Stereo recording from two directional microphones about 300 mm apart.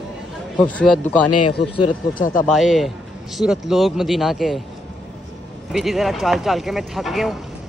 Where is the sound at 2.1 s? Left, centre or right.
Left.